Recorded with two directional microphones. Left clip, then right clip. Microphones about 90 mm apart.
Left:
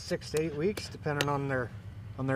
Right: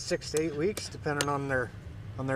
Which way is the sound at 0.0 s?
40° right (ahead or behind).